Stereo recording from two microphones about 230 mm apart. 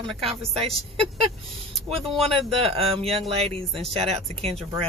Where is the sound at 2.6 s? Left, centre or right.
Right.